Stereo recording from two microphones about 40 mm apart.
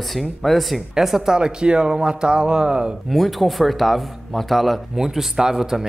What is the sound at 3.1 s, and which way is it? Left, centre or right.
Speech, centre.